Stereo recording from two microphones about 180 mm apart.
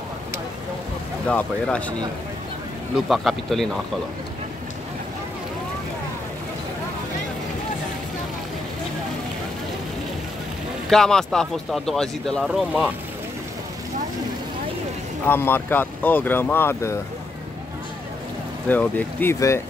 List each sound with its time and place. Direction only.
1.2 s speech: 5° left (ahead or behind)
3.1 s speech: centre (ahead or behind)
10.9 s speech: centre (ahead or behind)
15.2 s speech: 10° left (ahead or behind)
18.7 s speech: 10° left (ahead or behind)